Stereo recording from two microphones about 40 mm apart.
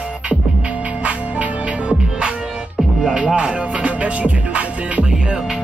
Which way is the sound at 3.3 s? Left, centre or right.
Right.